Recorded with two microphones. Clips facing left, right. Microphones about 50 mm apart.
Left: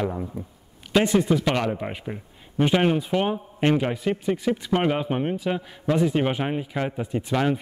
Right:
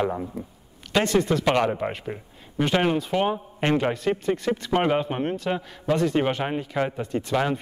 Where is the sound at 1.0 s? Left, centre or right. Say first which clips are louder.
Left 1 dB; centre.